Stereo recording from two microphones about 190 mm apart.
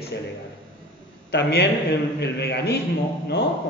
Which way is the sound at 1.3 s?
60° left (ahead or behind).